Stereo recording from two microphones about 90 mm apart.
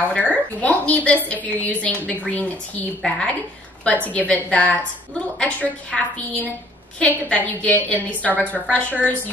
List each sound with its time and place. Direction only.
0.0 s a woman's voice: 15° left (ahead or behind)
7.0 s a woman's voice: 15° left (ahead or behind)